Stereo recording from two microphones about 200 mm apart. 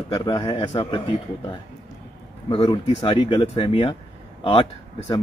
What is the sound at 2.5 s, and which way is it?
Speech, 25° left (ahead or behind).